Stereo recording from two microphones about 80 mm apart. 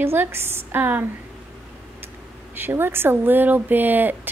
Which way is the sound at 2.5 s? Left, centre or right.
Right.